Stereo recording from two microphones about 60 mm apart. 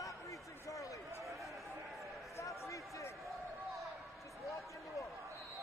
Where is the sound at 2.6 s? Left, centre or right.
Left.